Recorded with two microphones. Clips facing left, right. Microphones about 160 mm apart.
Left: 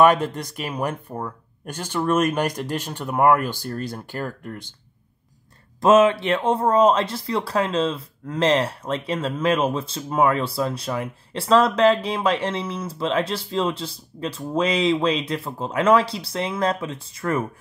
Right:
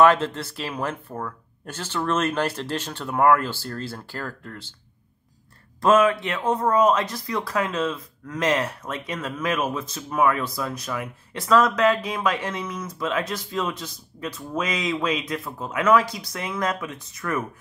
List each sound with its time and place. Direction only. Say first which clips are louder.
0.0 s speech: left 1 dB; 15° left (ahead or behind)
5.8 s speech: left 3 dB; 25° left (ahead or behind)